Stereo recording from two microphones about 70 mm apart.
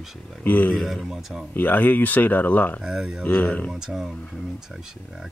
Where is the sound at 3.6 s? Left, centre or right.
Centre.